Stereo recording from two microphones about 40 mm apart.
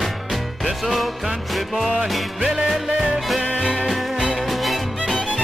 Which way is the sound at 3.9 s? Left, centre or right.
Centre.